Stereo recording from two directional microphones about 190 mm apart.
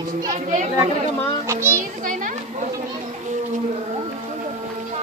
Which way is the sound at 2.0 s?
45° right (ahead or behind).